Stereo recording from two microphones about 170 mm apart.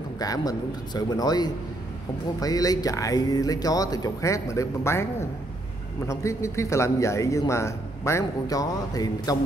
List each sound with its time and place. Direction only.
0.2 s a man's voice: 20° left (ahead or behind)